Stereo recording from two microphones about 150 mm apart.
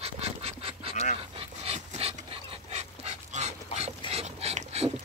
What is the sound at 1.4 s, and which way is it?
Dog, 40° right (ahead or behind).